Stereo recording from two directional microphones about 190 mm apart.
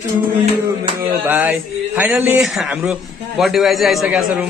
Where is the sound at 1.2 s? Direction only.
10° right (ahead or behind).